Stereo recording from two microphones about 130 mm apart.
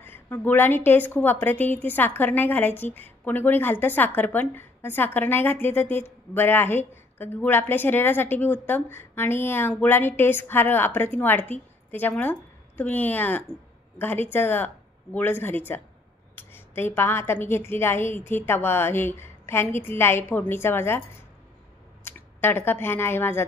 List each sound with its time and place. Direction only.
0.0 s a woman's voice: 15° left (ahead or behind)
22.0 s speech: 15° left (ahead or behind)